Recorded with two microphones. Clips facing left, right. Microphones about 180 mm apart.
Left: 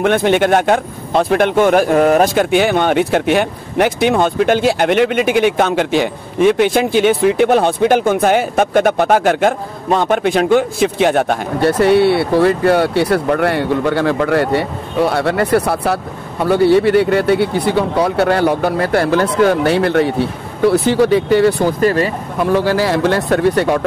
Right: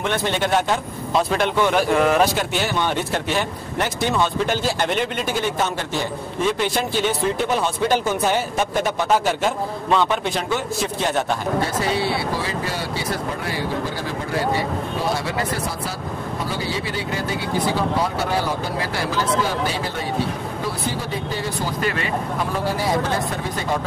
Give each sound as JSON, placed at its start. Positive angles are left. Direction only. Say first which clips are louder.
{"t": 0.0, "sound": "speech", "louder": "left 10 dB", "side_deg": 60}
{"t": 9.8, "sound": "a man's voice", "louder": "left 6 dB", "side_deg": 45}
{"t": 10.8, "sound": "a man's voice", "louder": "left 9 dB", "side_deg": 65}
{"t": 21.8, "sound": "speech", "louder": "left 11 dB", "side_deg": 40}
{"t": 22.4, "sound": "a man's voice", "louder": "left 13 dB", "side_deg": 80}